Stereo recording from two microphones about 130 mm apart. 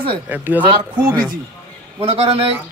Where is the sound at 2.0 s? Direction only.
50° right (ahead or behind).